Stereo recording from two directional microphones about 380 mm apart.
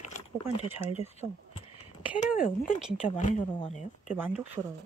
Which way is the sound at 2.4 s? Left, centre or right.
Left.